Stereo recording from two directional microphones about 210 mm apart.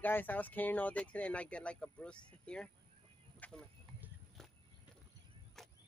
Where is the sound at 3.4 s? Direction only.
5° left (ahead or behind).